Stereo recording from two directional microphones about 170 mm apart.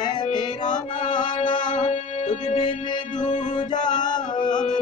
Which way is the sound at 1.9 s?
45° left (ahead or behind).